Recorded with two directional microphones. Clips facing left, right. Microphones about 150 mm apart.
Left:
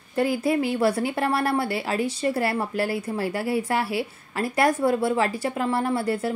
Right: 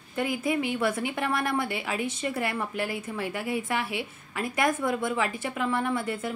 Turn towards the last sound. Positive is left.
turn(degrees=35)  # may be behind; listen again after turning